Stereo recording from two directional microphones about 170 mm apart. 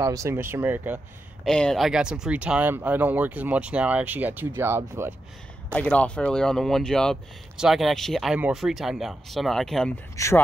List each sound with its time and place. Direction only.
0.0 s speech: 20° right (ahead or behind)
1.4 s speech: 5° left (ahead or behind); by 5.1 s 15° right (ahead or behind)
5.7 s speech: 5° left (ahead or behind)
10.1 s speech: 15° left (ahead or behind)